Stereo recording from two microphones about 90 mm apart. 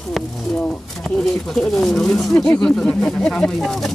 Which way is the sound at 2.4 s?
15° left (ahead or behind).